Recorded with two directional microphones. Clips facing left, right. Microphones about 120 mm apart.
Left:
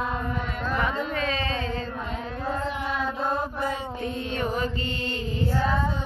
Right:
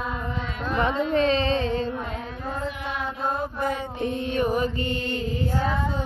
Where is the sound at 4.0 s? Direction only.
15° right (ahead or behind).